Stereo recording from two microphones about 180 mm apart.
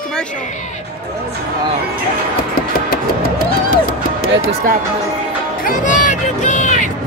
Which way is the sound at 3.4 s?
55° left (ahead or behind).